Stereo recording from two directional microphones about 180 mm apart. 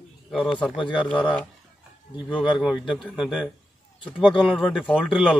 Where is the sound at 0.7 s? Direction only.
25° left (ahead or behind).